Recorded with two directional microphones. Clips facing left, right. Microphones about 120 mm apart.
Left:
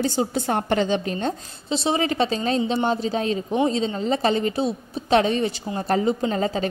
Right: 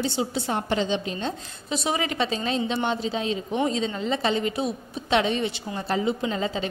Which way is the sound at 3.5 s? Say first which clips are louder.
Left 3 dB; 30° left (ahead or behind).